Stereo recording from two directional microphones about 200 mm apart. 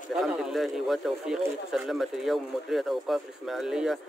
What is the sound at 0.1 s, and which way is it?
Speech, centre (ahead or behind).